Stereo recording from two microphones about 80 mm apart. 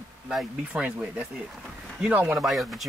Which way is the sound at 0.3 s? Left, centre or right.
Centre.